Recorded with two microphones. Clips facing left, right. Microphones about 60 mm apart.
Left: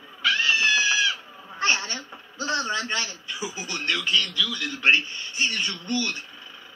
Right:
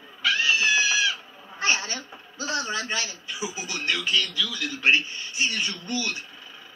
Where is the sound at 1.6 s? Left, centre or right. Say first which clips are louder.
Left 1 dB; centre.